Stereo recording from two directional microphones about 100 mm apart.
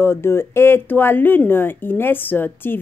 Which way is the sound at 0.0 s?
25° left (ahead or behind).